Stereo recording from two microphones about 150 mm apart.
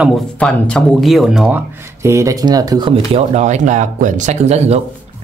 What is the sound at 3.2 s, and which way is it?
Speech, 50° right (ahead or behind).